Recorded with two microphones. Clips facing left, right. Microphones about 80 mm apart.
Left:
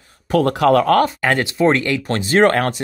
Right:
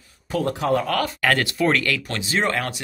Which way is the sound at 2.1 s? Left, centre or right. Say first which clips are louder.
Left 12 dB; left.